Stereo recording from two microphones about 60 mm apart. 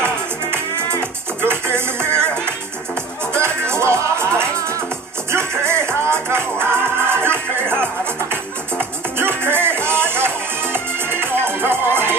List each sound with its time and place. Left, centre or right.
1.4 s music: right
3.3 s music: right
5.3 s music: right
9.4 s music: right